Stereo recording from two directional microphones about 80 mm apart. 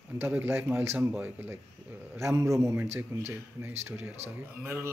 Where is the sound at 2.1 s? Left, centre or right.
Right.